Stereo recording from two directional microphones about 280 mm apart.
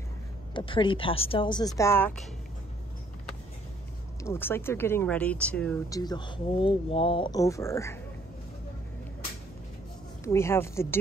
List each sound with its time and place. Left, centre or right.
0.6 s speech: centre
4.2 s speech: centre
10.2 s speech: centre